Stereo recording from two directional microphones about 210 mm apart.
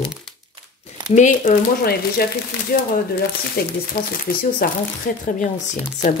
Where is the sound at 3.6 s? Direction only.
50° left (ahead or behind).